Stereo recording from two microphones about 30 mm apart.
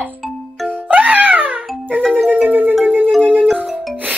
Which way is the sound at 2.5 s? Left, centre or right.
Right.